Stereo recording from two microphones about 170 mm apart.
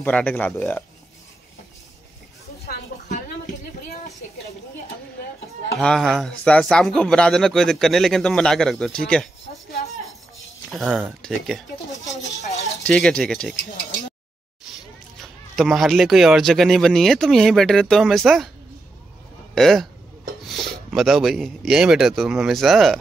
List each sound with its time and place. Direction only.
0.0 s speech: 10° left (ahead or behind)
5.8 s speech: 5° left (ahead or behind)
10.7 s speech: centre (ahead or behind)
13.6 s speech: 90° left
15.1 s speech: centre (ahead or behind)
19.5 s speech: centre (ahead or behind)